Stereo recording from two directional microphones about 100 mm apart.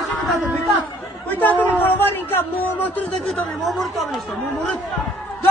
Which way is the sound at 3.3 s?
Centre (ahead or behind).